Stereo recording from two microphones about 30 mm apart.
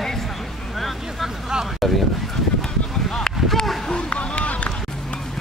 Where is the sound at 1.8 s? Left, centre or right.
Centre.